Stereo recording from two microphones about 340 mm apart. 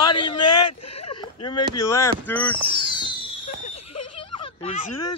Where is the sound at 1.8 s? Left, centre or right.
Centre.